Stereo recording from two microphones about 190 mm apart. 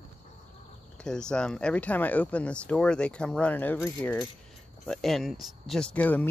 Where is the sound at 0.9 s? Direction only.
5° left (ahead or behind).